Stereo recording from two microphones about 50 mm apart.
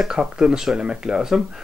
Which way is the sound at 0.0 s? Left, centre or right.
Centre.